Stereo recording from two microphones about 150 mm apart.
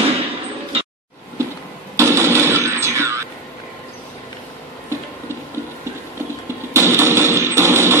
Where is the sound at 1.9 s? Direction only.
20° right (ahead or behind).